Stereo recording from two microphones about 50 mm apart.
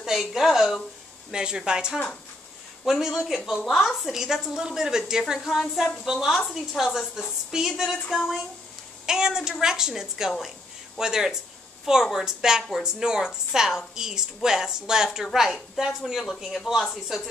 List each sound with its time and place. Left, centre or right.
0.0 s a woman's voice: centre
1.3 s a woman's voice: centre
15.3 s a woman's voice: centre